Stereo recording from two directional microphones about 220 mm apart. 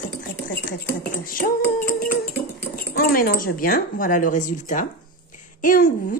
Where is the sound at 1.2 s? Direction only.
40° left (ahead or behind).